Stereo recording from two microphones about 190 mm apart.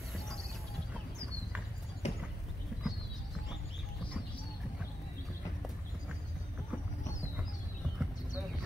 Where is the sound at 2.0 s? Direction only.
35° left (ahead or behind).